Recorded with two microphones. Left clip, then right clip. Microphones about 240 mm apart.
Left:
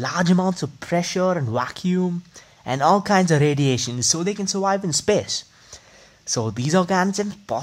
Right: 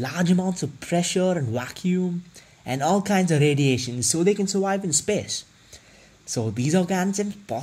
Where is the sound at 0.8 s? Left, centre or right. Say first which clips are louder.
Left 2 dB; left.